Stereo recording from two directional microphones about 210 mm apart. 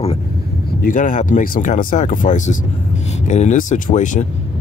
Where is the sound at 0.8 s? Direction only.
40° left (ahead or behind).